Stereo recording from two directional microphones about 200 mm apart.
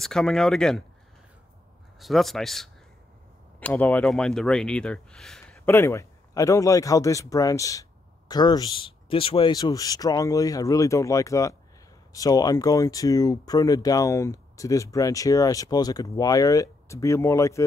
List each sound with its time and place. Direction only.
0.0 s speech: centre (ahead or behind)
2.0 s speech: centre (ahead or behind)